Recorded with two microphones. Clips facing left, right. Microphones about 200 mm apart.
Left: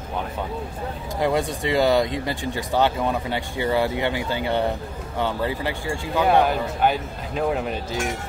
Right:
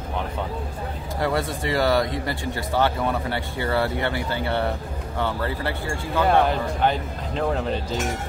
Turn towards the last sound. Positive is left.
turn(degrees=10)  # may be behind; listen again after turning